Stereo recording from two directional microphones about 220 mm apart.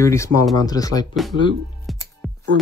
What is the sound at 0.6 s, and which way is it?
Speech, 15° left (ahead or behind).